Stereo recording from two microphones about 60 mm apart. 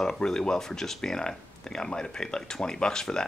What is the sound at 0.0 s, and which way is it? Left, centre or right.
Speech, centre.